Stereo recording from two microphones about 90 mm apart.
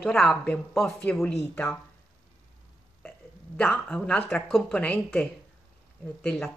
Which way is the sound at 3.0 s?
15° left (ahead or behind).